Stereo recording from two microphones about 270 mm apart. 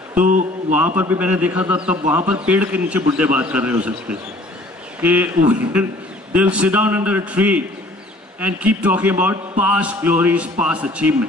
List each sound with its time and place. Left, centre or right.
0.2 s speech: right
0.7 s a man's voice: centre